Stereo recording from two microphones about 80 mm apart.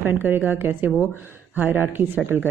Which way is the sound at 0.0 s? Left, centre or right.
Right.